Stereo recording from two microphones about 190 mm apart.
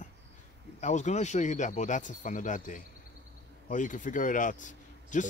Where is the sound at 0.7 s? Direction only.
40° left (ahead or behind).